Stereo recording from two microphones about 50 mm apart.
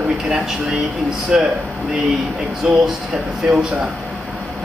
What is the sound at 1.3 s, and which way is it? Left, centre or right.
Speech, centre.